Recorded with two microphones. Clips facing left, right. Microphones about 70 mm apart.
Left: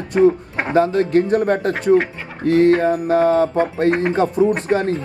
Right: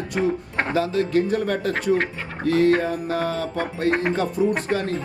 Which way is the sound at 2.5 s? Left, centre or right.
Left.